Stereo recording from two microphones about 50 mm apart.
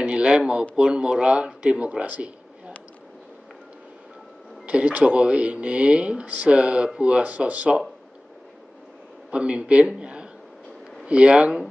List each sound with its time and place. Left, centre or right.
0.0 s speech: right
4.6 s speech: right
9.3 s speech: right